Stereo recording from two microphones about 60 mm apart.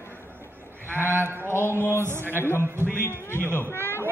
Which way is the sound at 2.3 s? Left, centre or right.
Left.